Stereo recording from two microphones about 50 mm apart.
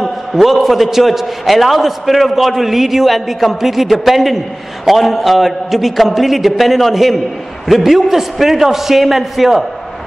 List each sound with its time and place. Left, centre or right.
0.0 s a man's voice: centre